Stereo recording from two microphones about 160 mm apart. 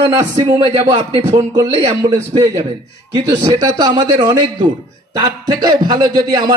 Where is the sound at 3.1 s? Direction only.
25° right (ahead or behind).